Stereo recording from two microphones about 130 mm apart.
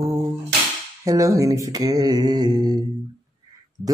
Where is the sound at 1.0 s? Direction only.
25° right (ahead or behind).